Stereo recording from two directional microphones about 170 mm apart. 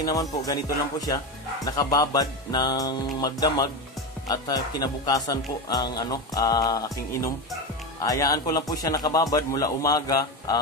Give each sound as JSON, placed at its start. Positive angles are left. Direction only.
{"t": 0.0, "sound": "speech", "side_deg": 20}